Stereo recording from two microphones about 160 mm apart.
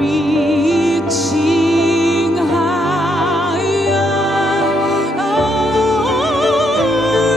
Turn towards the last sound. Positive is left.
turn(degrees=0)  # may be behind; listen again after turning